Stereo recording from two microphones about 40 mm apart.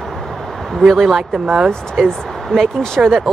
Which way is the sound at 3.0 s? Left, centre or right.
Right.